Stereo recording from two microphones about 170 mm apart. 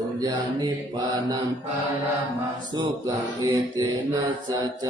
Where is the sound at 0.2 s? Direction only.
25° right (ahead or behind).